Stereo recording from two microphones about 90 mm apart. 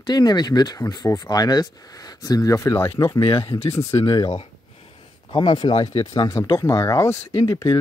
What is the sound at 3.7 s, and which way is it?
Speech, 35° left (ahead or behind).